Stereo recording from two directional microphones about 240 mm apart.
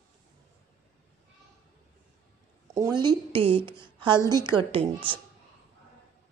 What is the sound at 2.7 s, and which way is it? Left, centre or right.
Speech, centre.